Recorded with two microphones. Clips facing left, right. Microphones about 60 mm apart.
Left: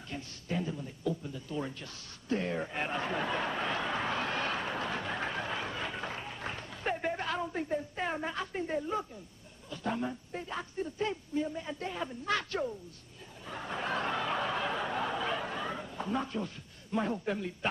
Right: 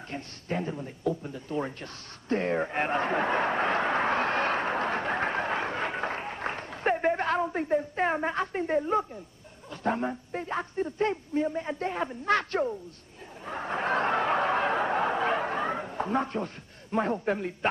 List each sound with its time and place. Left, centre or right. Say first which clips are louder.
0.1 s a sound: right 3 dB; right
9.7 s a man's voice: right 5 dB; right
13.5 s snicker: right 6 dB; right